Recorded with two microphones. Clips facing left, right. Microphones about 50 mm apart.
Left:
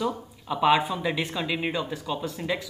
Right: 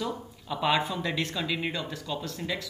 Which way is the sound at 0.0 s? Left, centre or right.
Centre.